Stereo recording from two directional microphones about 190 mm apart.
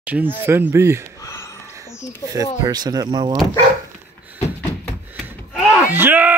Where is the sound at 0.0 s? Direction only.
10° right (ahead or behind).